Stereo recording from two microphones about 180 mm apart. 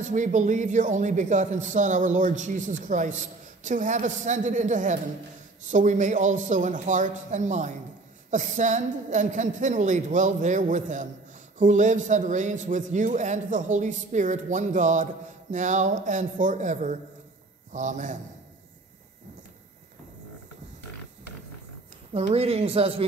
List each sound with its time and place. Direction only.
0.0 s a man's voice: 45° right (ahead or behind)
22.1 s speech: 35° right (ahead or behind)